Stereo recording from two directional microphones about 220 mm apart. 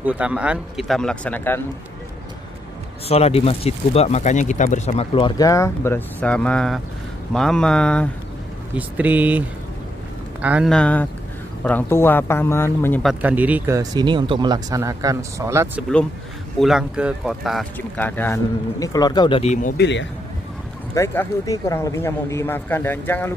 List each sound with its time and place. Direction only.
0.0 s speech: 5° right (ahead or behind)
3.1 s speech: 30° left (ahead or behind); by 8.1 s 5° left (ahead or behind)
8.7 s speech: 5° right (ahead or behind)
10.4 s speech: 5° right (ahead or behind)
13.0 s speech: 5° right (ahead or behind)
16.5 s speech: centre (ahead or behind); by 19.7 s 30° left (ahead or behind)
19.8 s speech: 55° left (ahead or behind)
20.9 s speech: 10° left (ahead or behind)